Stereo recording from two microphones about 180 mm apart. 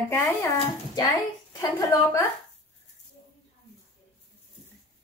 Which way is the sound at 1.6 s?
20° left (ahead or behind).